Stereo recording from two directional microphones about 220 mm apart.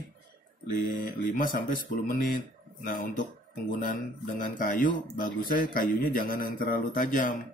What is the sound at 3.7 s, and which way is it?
Speech, 40° left (ahead or behind).